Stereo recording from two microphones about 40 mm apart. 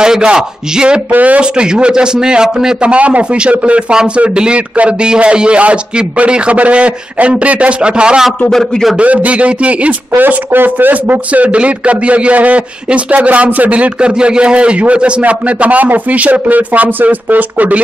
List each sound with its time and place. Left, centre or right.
0.0 s a man's voice: centre
1.1 s a man's voice: right
1.4 s a man's voice: right
8.5 s a man's voice: centre
8.9 s a man's voice: right
10.3 s speech: right
11.4 s a man's voice: right